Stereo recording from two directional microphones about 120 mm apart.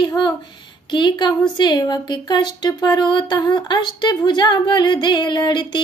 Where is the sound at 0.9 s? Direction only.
40° left (ahead or behind).